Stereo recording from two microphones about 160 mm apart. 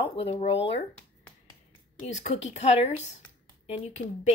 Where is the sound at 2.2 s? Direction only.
45° left (ahead or behind).